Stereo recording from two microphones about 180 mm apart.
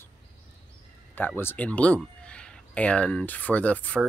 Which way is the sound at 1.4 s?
10° left (ahead or behind).